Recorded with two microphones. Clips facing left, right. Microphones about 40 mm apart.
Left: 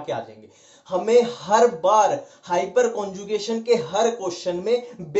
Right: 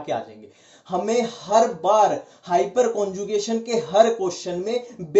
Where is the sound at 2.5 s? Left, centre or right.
Centre.